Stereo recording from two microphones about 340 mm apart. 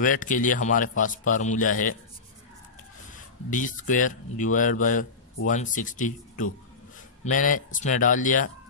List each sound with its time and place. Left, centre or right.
0.0 s speech: left
3.1 s speech: left